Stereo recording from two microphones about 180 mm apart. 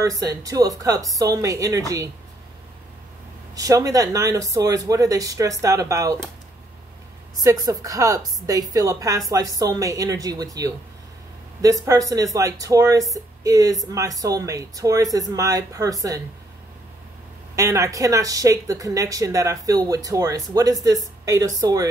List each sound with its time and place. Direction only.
0.0 s speech: 20° right (ahead or behind)
3.5 s speech: 20° right (ahead or behind)
7.3 s speech: 20° right (ahead or behind)
17.6 s speech: 15° right (ahead or behind)